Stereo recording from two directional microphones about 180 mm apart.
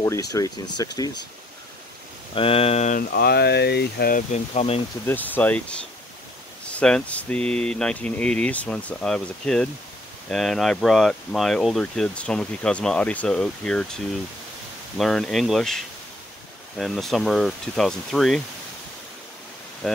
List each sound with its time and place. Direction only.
0.0 s speech: 20° left (ahead or behind)
2.3 s speech: 35° left (ahead or behind)
3.1 s speech: 60° left (ahead or behind)
4.3 s speech: 35° left (ahead or behind)
5.0 s speech: 10° left (ahead or behind)
19.8 s speech: centre (ahead or behind)